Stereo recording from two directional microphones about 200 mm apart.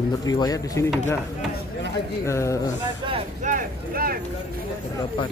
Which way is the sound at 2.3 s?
15° left (ahead or behind).